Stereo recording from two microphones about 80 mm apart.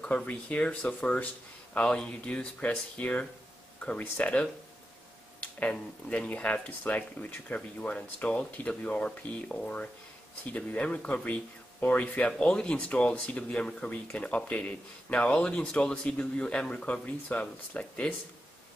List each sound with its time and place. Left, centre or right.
0.0 s speech: centre